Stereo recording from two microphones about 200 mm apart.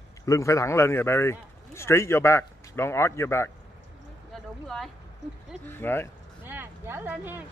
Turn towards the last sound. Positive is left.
turn(degrees=-10)  # may be behind; listen again after turning